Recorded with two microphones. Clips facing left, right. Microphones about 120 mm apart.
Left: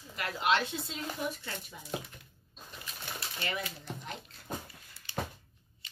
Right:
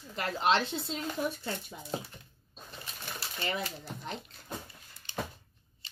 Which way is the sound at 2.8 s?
30° right (ahead or behind).